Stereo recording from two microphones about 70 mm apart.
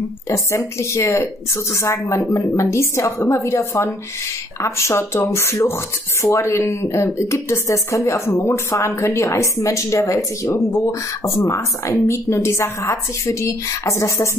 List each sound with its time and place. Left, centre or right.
0.3 s a woman's voice: left